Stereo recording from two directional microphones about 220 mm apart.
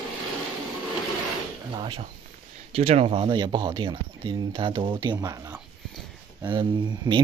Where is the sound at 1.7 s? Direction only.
20° right (ahead or behind).